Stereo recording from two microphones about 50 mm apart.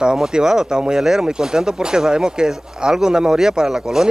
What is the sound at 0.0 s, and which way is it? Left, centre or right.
Speech, centre.